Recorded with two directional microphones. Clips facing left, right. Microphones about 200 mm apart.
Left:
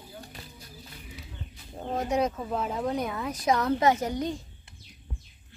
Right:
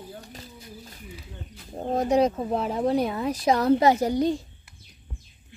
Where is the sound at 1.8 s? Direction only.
35° right (ahead or behind).